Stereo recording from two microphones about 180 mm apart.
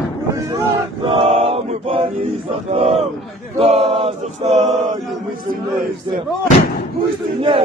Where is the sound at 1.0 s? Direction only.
30° right (ahead or behind).